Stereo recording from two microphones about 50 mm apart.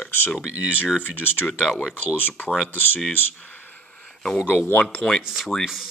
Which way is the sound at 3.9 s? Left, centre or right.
Centre.